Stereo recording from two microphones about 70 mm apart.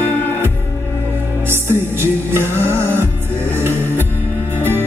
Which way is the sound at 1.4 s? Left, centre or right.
Right.